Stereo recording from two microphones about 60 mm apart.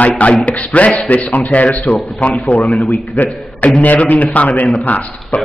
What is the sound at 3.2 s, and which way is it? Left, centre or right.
A man's voice, left.